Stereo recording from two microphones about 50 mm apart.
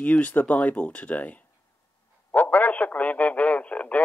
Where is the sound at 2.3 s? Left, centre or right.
Left.